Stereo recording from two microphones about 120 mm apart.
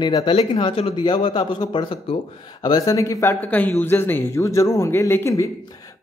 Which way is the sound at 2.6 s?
30° left (ahead or behind).